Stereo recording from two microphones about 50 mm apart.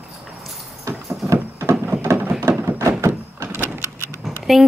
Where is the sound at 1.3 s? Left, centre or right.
Right.